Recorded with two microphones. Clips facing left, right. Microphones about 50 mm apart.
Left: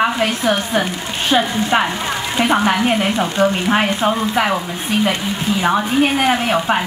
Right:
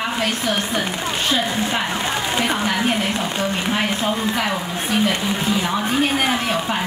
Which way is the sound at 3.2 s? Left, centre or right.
Left.